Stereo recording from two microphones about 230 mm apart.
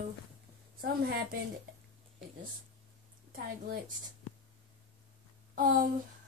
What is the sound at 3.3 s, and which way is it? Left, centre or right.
Speech, right.